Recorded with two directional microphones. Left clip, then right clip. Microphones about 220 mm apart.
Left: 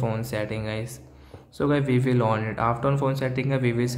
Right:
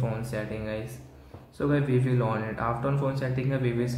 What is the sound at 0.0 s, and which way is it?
Speech, 35° left (ahead or behind).